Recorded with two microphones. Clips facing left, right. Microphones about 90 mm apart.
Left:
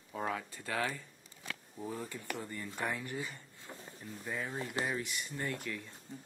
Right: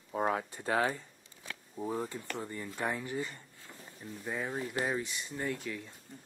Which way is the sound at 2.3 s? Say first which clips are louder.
Right 2 dB; 20° right (ahead or behind).